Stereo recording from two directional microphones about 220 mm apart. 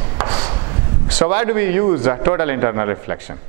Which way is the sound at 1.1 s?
10° right (ahead or behind).